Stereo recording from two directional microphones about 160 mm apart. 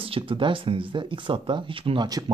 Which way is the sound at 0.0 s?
35° right (ahead or behind).